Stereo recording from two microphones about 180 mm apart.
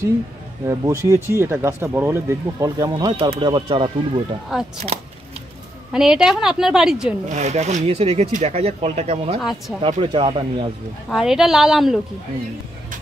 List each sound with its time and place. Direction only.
0.7 s speech: 15° right (ahead or behind)
4.5 s a woman's voice: centre (ahead or behind)
5.9 s a woman's voice: 5° right (ahead or behind)
7.2 s speech: 40° right (ahead or behind)
9.4 s a woman's voice: centre (ahead or behind)
9.8 s speech: 30° right (ahead or behind)
11.1 s a woman's voice: centre (ahead or behind)